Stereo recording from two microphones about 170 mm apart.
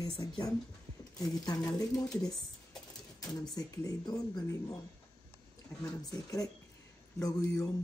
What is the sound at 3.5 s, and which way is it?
Speech, 20° left (ahead or behind).